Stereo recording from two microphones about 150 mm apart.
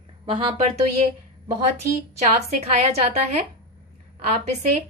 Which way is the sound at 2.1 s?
45° right (ahead or behind).